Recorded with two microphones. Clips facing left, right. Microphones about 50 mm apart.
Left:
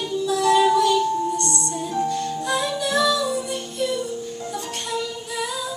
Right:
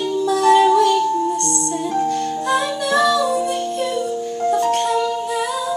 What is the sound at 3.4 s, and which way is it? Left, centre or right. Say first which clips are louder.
Music: right 5 dB; right.